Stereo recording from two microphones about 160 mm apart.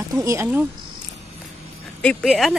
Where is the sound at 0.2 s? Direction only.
20° right (ahead or behind).